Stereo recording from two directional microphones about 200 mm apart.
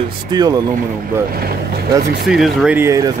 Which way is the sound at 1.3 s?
50° right (ahead or behind).